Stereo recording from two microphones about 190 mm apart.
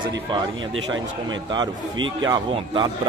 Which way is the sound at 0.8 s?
90° right.